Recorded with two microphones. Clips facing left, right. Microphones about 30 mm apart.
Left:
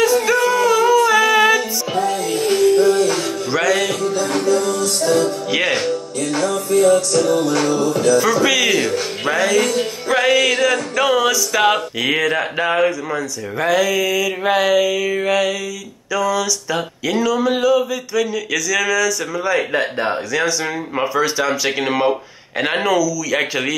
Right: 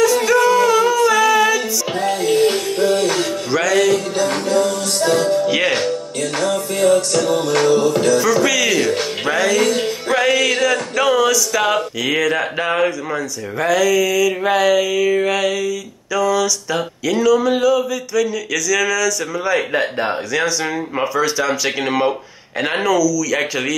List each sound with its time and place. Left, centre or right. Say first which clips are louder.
0.3 s a sound: right 2 dB; centre
0.7 s humming: left 1 dB; centre
2.0 s music: right 3 dB; right
3.5 s music: right 1 dB; centre
4.2 s music: right 1 dB; right
8.4 s speech: even; centre
9.2 s speech: even; centre
13.7 s speech: right 1 dB; centre
22.8 s speech: right 4 dB; left